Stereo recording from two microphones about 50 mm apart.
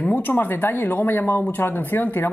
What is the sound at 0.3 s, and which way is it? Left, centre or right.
A woman's voice, left.